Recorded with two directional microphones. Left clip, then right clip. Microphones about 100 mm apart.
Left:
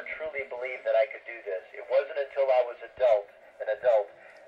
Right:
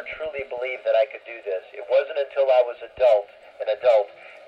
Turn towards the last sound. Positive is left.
turn(degrees=-25)  # may be behind; listen again after turning